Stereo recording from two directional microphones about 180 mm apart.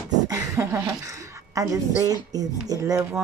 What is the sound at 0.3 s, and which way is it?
A woman's voice, 15° right (ahead or behind).